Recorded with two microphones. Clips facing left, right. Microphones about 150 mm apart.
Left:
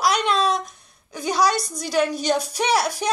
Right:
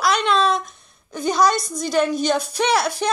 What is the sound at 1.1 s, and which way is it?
Speech, 50° right (ahead or behind).